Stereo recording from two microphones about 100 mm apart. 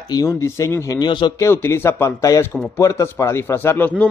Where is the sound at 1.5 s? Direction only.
25° left (ahead or behind).